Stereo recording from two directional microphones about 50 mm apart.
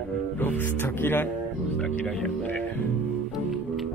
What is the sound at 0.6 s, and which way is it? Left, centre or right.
Speech, left.